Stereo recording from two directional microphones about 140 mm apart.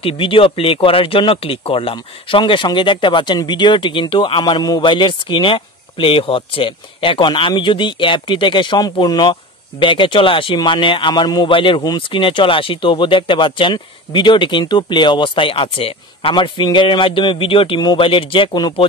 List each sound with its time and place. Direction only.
0.0 s speech: 40° left (ahead or behind)